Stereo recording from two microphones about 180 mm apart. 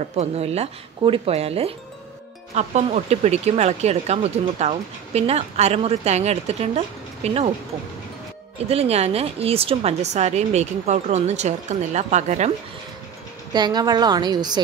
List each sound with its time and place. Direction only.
0.0 s speech: 35° right (ahead or behind)
8.6 s speech: 35° right (ahead or behind)
13.5 s a woman's voice: 25° right (ahead or behind)